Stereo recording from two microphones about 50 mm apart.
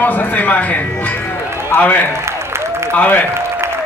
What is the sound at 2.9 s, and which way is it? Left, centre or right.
Speech, left.